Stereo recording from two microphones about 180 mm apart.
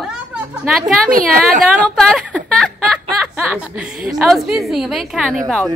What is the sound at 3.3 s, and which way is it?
A woman's voice, 5° right (ahead or behind).